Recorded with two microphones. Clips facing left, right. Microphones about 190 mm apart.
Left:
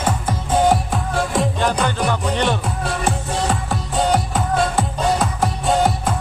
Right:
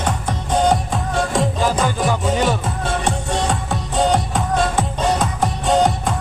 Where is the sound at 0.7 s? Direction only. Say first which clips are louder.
Even; centre (ahead or behind).